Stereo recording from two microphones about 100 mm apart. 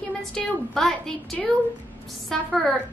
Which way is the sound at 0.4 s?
5° left (ahead or behind).